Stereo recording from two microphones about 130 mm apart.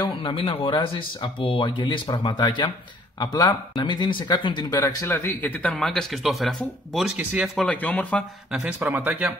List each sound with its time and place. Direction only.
0.0 s speech: 40° left (ahead or behind)
3.7 s speech: 35° left (ahead or behind)
4.8 s speech: 20° left (ahead or behind); by 7.5 s 10° right (ahead or behind)
7.5 s speech: 10° left (ahead or behind)
8.5 s a man's voice: 5° right (ahead or behind)